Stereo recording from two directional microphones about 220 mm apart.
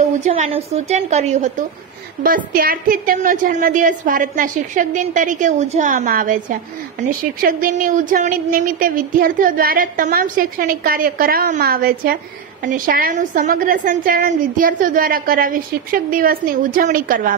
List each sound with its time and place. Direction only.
0.2 s a woman's voice: 30° right (ahead or behind)